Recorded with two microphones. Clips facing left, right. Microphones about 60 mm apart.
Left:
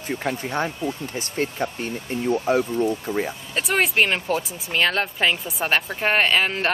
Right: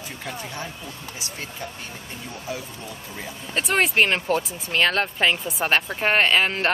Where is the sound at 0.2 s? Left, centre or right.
Left.